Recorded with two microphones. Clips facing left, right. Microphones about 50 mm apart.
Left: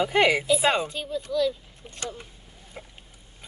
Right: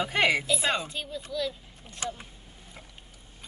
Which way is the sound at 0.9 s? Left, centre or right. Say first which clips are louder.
Left 5 dB; centre.